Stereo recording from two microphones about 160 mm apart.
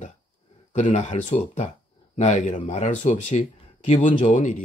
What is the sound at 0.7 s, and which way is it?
A man's voice, 50° left (ahead or behind).